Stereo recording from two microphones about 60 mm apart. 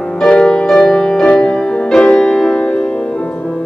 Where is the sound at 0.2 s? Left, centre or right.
Centre.